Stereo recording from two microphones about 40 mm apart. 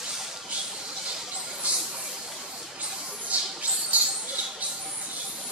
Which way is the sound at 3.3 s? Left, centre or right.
Right.